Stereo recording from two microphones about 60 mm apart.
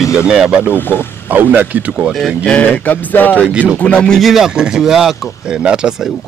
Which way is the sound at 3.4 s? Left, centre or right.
Right.